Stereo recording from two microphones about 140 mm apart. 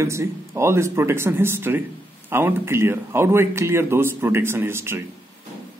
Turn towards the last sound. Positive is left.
turn(degrees=-15)  # may be behind; listen again after turning